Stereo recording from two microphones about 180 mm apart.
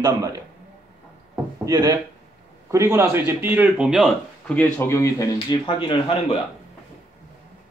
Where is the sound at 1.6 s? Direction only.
20° right (ahead or behind); by 5.2 s 15° left (ahead or behind).